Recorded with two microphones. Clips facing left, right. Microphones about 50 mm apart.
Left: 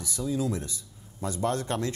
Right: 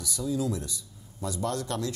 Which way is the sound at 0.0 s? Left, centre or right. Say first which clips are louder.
Even; left.